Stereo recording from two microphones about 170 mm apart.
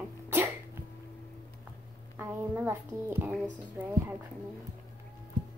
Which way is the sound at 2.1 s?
10° right (ahead or behind).